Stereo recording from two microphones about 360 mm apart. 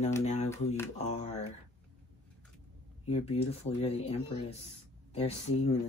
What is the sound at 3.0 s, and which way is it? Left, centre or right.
Speech, centre.